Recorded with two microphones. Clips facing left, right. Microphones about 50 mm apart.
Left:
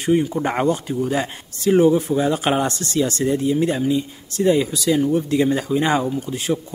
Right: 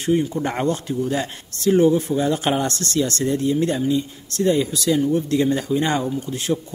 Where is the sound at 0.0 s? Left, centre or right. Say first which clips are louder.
Left 2 dB; left.